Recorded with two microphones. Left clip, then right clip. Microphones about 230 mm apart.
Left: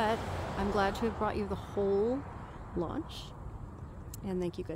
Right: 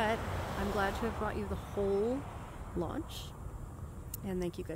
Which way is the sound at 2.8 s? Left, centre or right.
Centre.